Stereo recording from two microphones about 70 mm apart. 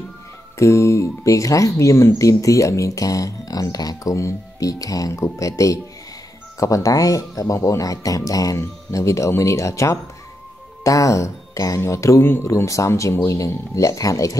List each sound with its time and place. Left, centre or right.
0.6 s speech: left
4.1 s speech: left